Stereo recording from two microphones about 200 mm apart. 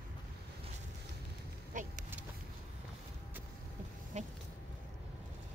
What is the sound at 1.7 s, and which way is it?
Vehicle, 40° right (ahead or behind).